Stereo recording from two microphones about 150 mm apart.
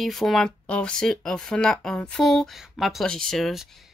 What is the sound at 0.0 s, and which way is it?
Speech, centre (ahead or behind).